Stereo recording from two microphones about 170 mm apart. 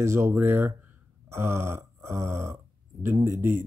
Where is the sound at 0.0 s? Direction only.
15° right (ahead or behind).